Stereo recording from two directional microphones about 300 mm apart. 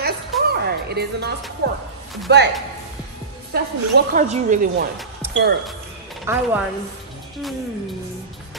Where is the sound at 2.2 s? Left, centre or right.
Right.